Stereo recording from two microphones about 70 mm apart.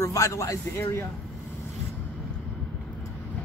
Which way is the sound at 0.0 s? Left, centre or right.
Left.